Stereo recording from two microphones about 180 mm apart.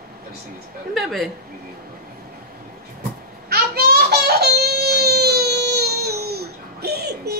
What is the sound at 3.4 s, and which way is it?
Baby cry, 60° right (ahead or behind).